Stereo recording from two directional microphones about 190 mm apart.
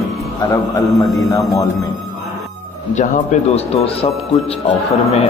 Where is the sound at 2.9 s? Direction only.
40° left (ahead or behind).